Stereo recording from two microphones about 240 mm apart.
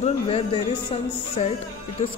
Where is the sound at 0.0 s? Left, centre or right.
Left.